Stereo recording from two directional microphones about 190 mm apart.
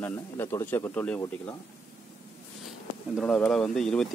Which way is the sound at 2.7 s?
Centre (ahead or behind).